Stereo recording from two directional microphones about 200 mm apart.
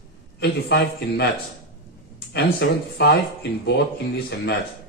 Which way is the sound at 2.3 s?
55° left (ahead or behind).